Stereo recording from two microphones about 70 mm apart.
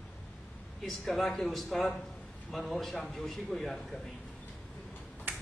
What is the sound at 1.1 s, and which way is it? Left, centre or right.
A man's voice, centre.